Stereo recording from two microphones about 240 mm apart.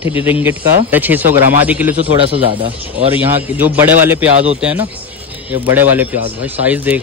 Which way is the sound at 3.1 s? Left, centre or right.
Centre.